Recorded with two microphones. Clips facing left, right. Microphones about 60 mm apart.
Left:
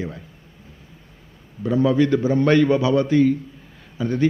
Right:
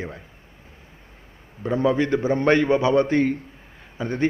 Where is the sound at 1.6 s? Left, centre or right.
Right.